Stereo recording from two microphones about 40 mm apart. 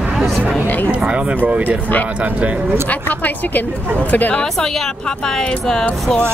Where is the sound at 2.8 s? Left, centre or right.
Left.